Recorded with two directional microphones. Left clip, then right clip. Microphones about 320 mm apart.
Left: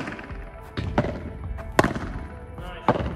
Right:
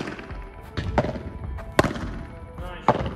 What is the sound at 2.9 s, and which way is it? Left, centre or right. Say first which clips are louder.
Thunk: right 2 dB; right.